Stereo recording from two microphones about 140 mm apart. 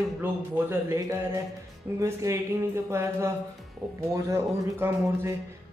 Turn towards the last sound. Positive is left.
turn(degrees=-15)  # may be behind; listen again after turning